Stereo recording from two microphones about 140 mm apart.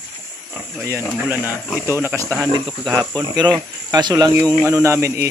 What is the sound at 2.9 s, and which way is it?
A man's voice, 25° right (ahead or behind).